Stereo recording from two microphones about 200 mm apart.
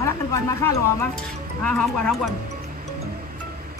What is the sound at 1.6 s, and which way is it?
Speech, 5° left (ahead or behind).